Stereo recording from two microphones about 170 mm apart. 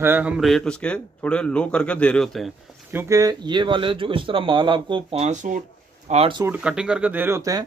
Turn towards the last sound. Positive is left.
turn(degrees=-20)  # may be behind; listen again after turning